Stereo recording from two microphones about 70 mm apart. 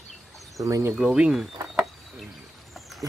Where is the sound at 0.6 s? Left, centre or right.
Right.